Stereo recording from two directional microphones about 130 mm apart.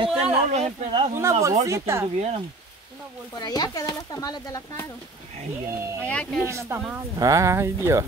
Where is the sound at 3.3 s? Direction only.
30° left (ahead or behind).